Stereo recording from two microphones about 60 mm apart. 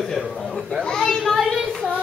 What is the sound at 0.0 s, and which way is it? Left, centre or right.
Speech, centre.